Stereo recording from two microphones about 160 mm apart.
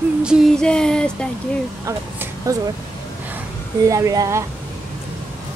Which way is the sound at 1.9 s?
20° right (ahead or behind).